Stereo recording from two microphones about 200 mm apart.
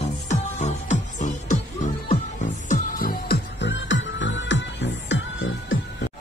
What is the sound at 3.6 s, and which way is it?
Music, 65° left (ahead or behind).